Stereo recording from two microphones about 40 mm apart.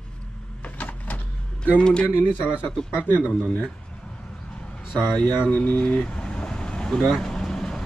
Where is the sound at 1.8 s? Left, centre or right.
Left.